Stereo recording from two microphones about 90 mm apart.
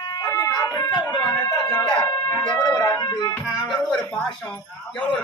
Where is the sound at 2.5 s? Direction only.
10° left (ahead or behind).